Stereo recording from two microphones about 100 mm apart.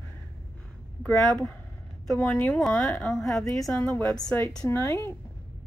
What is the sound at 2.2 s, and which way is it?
Speech, 15° left (ahead or behind).